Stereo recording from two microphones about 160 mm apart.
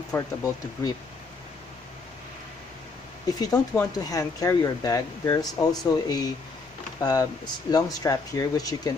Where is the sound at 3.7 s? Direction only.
20° left (ahead or behind).